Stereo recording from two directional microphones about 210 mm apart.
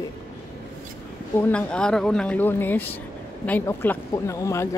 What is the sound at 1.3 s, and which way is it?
Speech, 5° left (ahead or behind).